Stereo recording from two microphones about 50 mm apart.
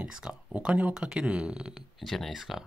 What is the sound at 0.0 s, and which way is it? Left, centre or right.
Speech, centre.